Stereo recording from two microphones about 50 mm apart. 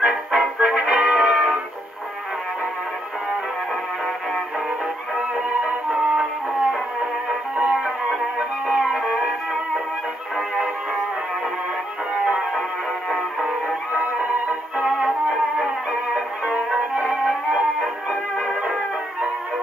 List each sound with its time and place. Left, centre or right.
0.0 s music: centre
5.6 s music: centre
8.4 s music: right
8.9 s music: centre
13.4 s music: centre
16.7 s music: centre